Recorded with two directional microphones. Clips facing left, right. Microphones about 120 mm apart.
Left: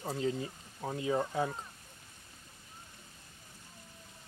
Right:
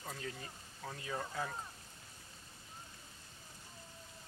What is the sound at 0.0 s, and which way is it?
Speech, 25° left (ahead or behind).